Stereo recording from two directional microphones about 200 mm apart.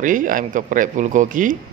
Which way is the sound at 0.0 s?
40° right (ahead or behind).